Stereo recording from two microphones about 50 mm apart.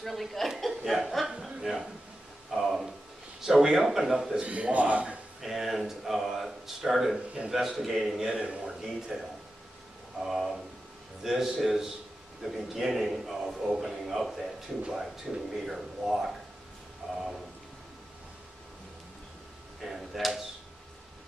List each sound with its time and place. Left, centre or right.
0.0 s a man's voice: centre
2.5 s a sound: centre
3.3 s a man's voice: centre
4.5 s a man's voice: right
5.4 s a man's voice: centre
10.2 s a man's voice: centre
17.0 s a sound: centre
19.8 s a man's voice: centre